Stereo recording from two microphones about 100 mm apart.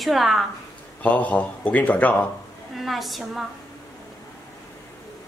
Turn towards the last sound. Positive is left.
turn(degrees=0)  # may be behind; listen again after turning